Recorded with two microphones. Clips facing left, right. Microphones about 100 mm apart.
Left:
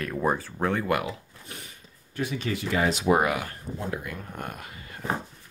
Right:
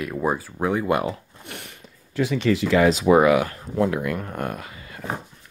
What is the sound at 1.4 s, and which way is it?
Speech, 75° right (ahead or behind).